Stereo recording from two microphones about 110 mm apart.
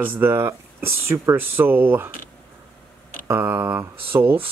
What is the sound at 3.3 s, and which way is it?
Speech, 20° right (ahead or behind).